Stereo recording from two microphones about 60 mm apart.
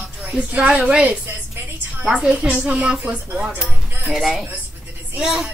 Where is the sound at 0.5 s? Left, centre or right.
Right.